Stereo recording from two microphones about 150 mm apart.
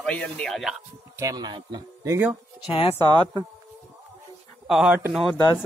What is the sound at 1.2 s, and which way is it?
Speech, 25° right (ahead or behind).